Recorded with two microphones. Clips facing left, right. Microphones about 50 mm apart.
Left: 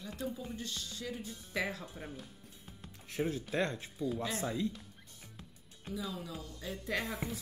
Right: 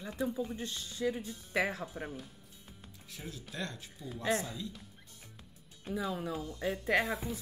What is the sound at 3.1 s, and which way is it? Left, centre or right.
Speech, left.